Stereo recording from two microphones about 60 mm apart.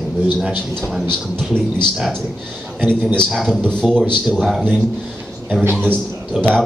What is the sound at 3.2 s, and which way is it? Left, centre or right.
Speech, centre.